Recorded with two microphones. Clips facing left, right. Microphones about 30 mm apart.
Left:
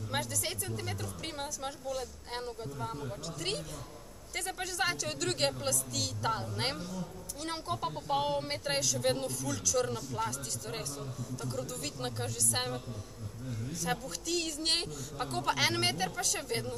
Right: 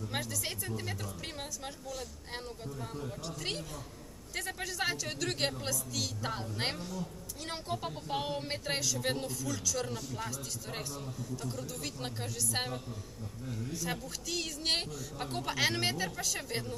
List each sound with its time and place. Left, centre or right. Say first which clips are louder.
0.1 s a woman's voice: left 4 dB; centre